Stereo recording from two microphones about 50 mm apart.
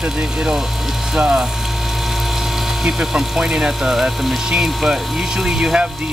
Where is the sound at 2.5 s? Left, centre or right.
Centre.